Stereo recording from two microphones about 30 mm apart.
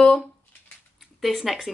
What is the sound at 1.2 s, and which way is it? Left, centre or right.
Speech, centre.